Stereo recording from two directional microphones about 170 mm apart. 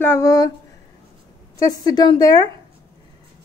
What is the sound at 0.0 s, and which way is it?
Speech, 15° left (ahead or behind).